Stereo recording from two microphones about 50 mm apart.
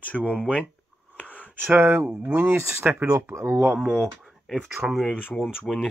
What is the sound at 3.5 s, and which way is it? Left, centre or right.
Speech, right.